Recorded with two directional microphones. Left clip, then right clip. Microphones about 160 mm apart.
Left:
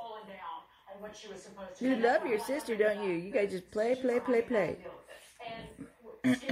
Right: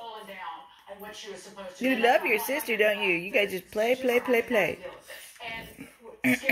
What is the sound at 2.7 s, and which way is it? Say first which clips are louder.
Speech: right 5 dB; 30° right (ahead or behind).